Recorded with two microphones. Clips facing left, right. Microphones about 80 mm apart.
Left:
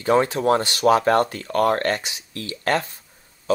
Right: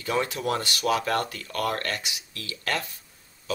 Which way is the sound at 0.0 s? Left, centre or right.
Left.